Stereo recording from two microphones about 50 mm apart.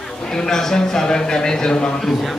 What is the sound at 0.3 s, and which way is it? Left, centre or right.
A man's voice, centre.